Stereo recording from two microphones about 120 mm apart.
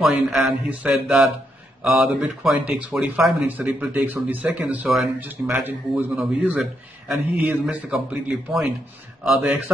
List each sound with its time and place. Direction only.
0.0 s speech: centre (ahead or behind)
3.4 s speech: 15° right (ahead or behind)
6.1 s speech: 5° right (ahead or behind)